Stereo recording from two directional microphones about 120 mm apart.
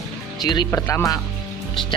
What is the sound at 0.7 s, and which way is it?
Speech, 25° left (ahead or behind).